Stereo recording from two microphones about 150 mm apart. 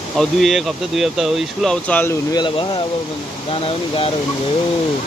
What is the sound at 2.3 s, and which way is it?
Speech, 30° left (ahead or behind).